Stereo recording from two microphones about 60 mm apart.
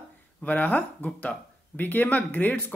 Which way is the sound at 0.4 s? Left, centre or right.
Left.